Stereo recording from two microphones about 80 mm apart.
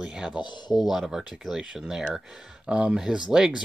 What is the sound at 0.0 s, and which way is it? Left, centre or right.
Speech, centre.